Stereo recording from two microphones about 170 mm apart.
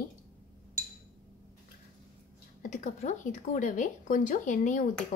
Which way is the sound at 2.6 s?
45° left (ahead or behind).